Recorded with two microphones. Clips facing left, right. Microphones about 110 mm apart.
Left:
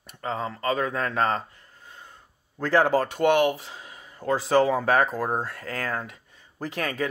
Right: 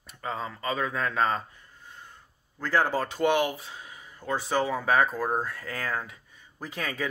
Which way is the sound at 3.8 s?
70° left (ahead or behind).